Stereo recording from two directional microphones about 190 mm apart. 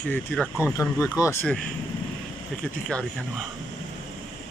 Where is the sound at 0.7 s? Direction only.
15° left (ahead or behind).